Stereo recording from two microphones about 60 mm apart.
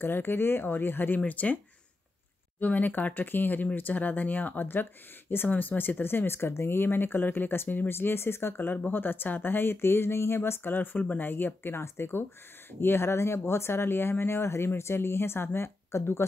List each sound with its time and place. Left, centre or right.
0.0 s speech: left
2.6 s speech: left